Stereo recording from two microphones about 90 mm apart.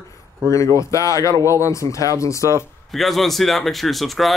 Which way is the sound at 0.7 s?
35° left (ahead or behind).